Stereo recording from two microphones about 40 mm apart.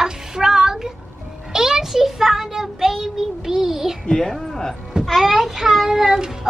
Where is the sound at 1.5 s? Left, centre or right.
Centre.